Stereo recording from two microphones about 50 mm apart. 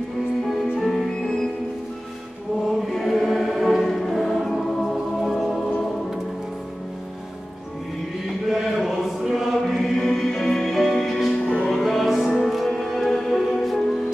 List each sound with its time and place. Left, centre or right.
0.7 s music: centre
2.8 s music: centre
8.5 s choir: centre
11.2 s music: centre
11.8 s music: centre